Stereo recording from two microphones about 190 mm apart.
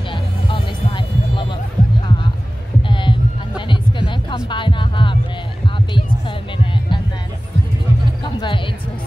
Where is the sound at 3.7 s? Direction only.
25° left (ahead or behind).